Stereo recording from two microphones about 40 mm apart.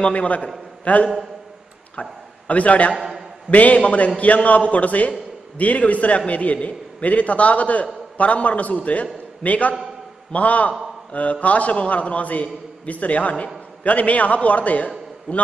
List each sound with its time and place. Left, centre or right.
0.0 s a man's voice: left
3.0 s a sound: centre
3.4 s a man's voice: left